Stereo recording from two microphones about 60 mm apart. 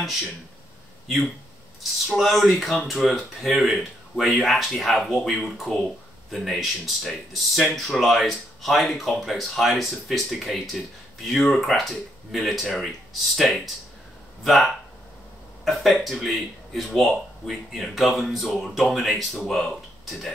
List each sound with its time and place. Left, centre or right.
1.8 s speech: centre